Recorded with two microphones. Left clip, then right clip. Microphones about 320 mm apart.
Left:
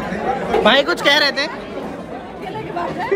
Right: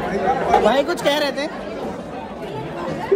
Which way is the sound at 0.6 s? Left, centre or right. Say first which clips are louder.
Left 4 dB; left.